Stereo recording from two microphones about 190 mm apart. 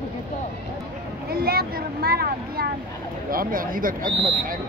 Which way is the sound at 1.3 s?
55° right (ahead or behind).